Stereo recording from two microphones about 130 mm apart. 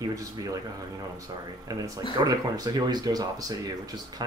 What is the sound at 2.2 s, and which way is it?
Speech, 30° right (ahead or behind).